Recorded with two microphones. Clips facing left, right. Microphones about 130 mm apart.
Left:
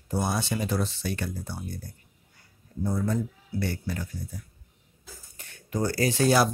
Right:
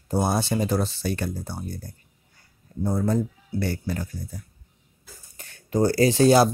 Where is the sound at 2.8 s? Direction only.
40° right (ahead or behind).